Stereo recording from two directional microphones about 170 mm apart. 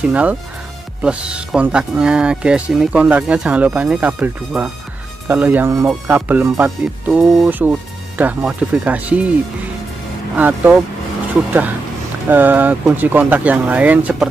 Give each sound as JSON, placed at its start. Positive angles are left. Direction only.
{"t": 0.0, "sound": "speech", "side_deg": -10}
{"t": 10.3, "sound": "speech", "side_deg": -10}
{"t": 12.3, "sound": "speech", "side_deg": -10}